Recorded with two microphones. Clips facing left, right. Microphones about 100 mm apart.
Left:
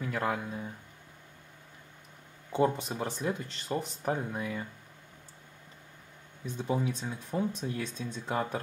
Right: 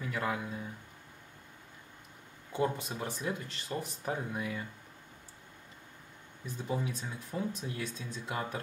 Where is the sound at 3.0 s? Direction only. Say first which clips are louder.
Left 4 dB; centre (ahead or behind).